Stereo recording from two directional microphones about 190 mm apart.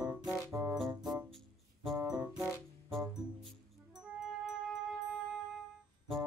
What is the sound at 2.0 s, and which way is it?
Music, 20° right (ahead or behind).